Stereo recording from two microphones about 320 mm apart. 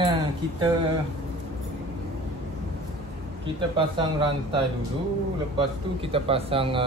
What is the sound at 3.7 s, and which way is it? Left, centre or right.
Speech, centre.